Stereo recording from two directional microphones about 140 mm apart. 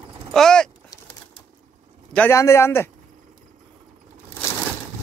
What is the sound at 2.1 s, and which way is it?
Speech, 15° left (ahead or behind).